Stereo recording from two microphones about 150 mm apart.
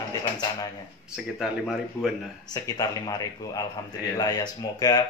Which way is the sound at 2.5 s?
25° left (ahead or behind).